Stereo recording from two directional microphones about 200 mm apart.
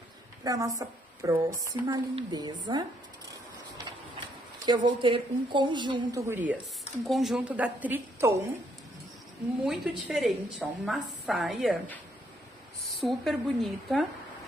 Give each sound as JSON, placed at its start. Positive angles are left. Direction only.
{"t": 0.4, "sound": "a woman's voice", "side_deg": -15}
{"t": 4.6, "sound": "a woman's voice", "side_deg": -20}
{"t": 9.7, "sound": "a woman's voice", "side_deg": 0}